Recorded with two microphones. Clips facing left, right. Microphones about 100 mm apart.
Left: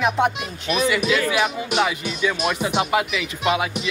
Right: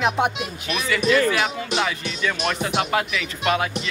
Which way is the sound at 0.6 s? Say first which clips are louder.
Left 1 dB; 15° left (ahead or behind).